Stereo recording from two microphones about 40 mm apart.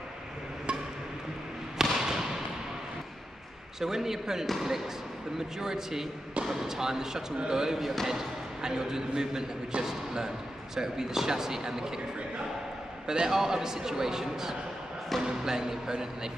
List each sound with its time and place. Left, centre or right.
1.8 s fireworks: centre
3.8 s a man's voice: centre
7.8 s speech: centre
8.1 s a man's voice: centre
13.0 s a man's voice: centre